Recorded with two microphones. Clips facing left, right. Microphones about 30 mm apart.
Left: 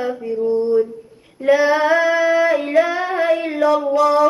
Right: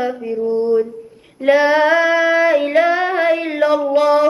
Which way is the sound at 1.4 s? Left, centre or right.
Right.